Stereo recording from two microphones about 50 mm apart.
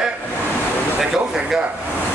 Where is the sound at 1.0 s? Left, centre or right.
Centre.